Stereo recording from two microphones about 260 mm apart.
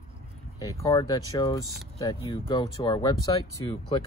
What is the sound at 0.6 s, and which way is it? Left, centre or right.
Speech, centre.